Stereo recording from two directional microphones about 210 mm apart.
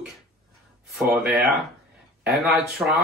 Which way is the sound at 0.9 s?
5° right (ahead or behind).